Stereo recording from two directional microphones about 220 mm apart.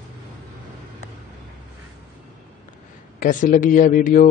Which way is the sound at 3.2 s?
35° left (ahead or behind).